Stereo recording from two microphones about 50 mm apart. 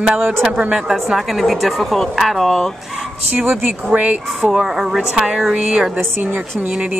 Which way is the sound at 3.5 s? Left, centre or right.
Right.